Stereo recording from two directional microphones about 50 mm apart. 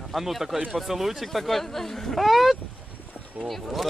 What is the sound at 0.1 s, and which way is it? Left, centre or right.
Speech, centre.